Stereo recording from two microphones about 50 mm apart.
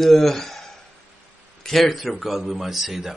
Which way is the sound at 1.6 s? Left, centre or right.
Centre.